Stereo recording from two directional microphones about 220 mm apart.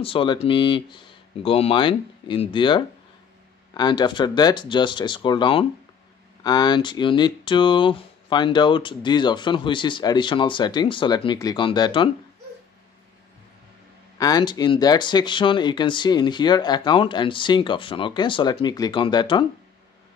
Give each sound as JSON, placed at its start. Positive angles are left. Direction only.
{"t": 0.0, "sound": "speech", "side_deg": 25}
{"t": 14.1, "sound": "speech", "side_deg": 15}